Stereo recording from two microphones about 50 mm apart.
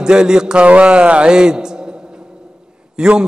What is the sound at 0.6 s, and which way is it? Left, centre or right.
A man's voice, right.